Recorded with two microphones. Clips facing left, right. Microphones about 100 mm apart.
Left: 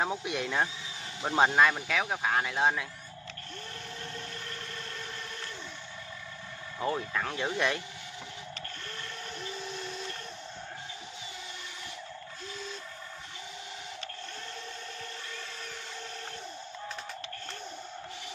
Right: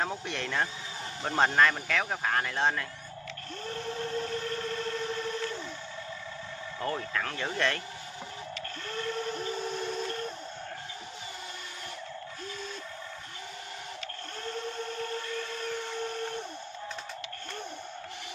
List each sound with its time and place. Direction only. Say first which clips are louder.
0.0 s speech: left 2 dB; 10° left (ahead or behind)
6.8 s speech: left 1 dB; 10° left (ahead or behind)
9.3 s train: right 6 dB; 40° right (ahead or behind)